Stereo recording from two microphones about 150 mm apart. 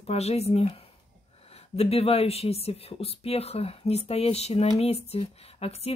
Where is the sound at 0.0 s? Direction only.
45° left (ahead or behind).